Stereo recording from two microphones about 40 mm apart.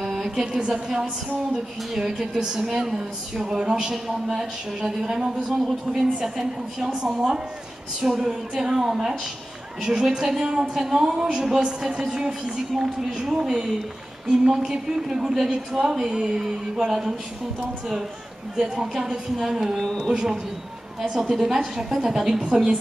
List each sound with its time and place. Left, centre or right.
0.0 s speech: centre
18.6 s speech: centre
21.1 s speech: centre